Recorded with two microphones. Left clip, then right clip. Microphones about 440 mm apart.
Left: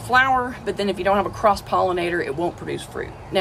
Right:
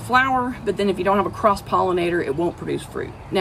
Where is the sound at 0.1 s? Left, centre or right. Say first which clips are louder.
Left 1 dB; centre.